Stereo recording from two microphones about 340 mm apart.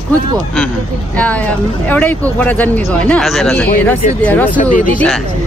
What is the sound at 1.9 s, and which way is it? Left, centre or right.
Speech, centre.